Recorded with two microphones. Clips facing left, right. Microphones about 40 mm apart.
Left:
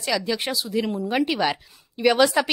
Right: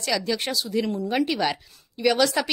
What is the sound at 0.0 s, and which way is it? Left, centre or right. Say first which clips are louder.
A woman's voice: left 1 dB; centre.